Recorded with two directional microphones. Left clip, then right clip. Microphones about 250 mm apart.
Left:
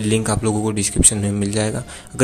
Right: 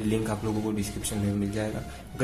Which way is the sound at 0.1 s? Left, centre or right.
Left.